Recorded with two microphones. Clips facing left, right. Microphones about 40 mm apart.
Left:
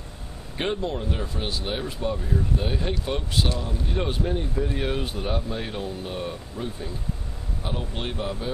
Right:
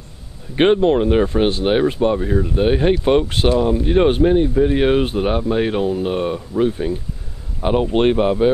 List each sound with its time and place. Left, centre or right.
0.6 s speech: right